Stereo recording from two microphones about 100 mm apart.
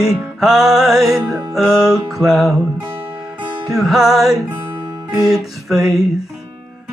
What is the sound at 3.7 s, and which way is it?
Music, 5° right (ahead or behind).